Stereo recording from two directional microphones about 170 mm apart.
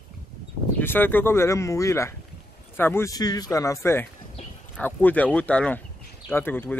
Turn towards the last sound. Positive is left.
turn(degrees=10)  # may be behind; listen again after turning